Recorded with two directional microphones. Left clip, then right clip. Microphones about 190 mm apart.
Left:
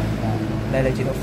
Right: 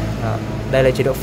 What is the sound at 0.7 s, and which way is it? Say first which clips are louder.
Speech: right 8 dB; 50° right (ahead or behind).